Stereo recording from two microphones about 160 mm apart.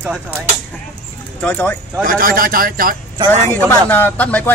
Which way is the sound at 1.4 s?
15° left (ahead or behind).